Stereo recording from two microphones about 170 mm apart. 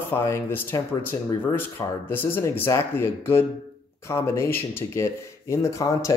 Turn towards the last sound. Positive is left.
turn(degrees=20)  # may be behind; listen again after turning